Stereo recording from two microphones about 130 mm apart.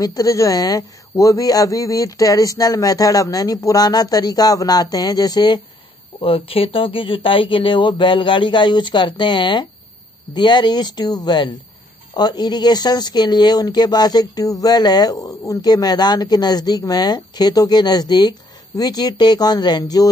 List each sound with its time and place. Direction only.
0.0 s speech: 25° left (ahead or behind)
6.2 s speech: 45° left (ahead or behind); by 20.1 s 30° left (ahead or behind)